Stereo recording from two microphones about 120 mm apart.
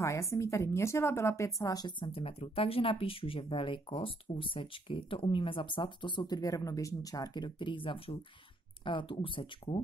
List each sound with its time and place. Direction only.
0.0 s speech: 25° left (ahead or behind); by 9.8 s 45° left (ahead or behind)